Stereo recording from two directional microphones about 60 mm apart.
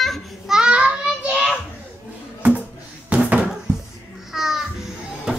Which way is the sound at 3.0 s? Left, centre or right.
Right.